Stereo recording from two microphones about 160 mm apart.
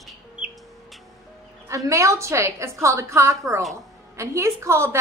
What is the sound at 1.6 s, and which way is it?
A woman's voice, 20° right (ahead or behind).